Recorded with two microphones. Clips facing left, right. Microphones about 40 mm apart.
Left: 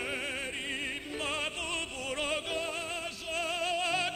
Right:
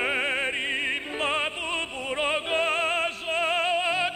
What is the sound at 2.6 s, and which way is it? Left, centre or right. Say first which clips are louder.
Music: right 11 dB; right.